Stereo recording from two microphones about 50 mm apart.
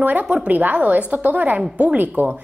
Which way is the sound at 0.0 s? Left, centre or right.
Right.